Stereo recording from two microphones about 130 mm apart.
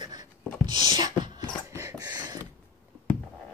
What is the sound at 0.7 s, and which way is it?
Beatboxing, 35° right (ahead or behind).